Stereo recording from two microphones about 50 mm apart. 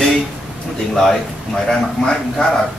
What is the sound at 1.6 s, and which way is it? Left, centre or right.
Speech, centre.